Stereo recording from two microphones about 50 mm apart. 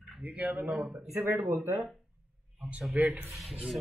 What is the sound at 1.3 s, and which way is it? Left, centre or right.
Speech, right.